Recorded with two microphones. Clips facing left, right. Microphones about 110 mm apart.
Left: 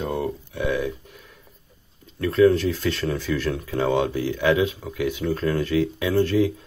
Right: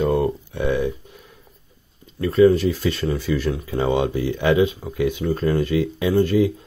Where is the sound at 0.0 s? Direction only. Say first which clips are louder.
Right 7 dB; 60° right (ahead or behind).